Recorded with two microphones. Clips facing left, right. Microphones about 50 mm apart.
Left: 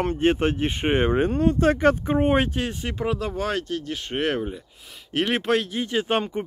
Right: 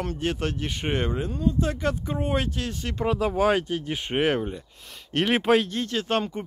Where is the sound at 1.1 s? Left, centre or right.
Left.